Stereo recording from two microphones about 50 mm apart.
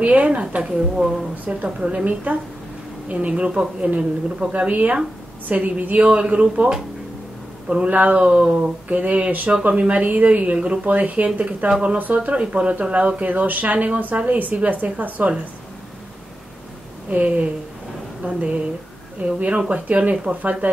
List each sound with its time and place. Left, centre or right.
0.0 s speech: right
2.3 s a woman's voice: right
17.1 s speech: right